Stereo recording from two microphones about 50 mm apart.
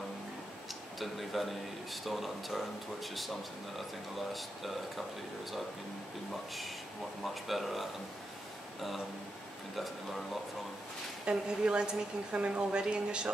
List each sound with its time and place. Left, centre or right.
0.9 s speech: centre
7.2 s speech: centre
9.8 s speech: centre
11.2 s a woman's voice: centre